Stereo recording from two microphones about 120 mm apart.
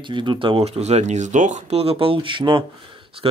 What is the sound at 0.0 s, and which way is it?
Speech, 40° right (ahead or behind).